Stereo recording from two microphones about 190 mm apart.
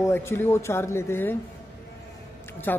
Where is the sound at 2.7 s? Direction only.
10° left (ahead or behind).